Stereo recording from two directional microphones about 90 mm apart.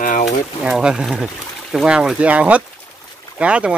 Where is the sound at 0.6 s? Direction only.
10° right (ahead or behind).